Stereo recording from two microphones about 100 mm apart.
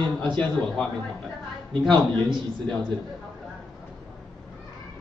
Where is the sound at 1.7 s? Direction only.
50° right (ahead or behind).